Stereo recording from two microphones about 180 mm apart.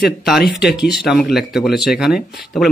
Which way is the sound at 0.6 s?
Centre (ahead or behind).